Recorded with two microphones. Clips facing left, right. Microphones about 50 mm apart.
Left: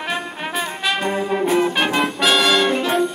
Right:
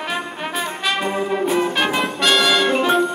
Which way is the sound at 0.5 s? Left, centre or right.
Centre.